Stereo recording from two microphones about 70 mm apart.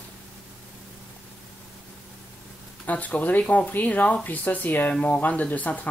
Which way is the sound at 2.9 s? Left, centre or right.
Left.